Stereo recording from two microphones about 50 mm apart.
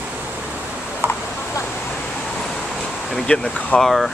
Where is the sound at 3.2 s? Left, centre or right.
Centre.